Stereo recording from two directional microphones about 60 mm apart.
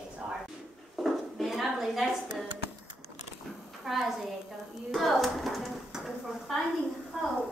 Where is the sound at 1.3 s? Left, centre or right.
Centre.